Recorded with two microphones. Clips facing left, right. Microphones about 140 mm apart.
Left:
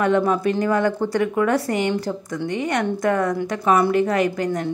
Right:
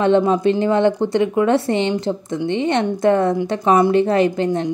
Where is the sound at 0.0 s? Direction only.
25° right (ahead or behind).